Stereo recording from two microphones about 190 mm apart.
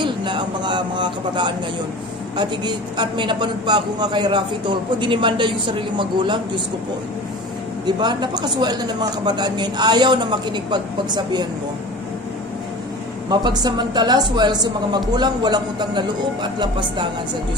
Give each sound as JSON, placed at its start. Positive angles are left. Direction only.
{"t": 0.0, "sound": "a man's voice", "side_deg": -25}
{"t": 7.8, "sound": "a man's voice", "side_deg": -20}
{"t": 13.3, "sound": "a man's voice", "side_deg": -20}